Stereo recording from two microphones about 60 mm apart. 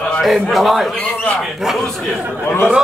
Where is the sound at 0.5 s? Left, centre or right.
Centre.